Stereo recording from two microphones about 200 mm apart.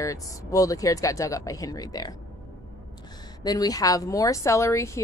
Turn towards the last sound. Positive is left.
turn(degrees=15)  # may be behind; listen again after turning